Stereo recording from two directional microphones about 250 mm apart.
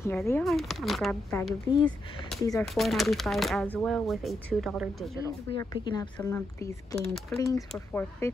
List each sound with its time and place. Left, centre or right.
0.0 s speech: centre
2.5 s speech: centre
5.2 s speech: centre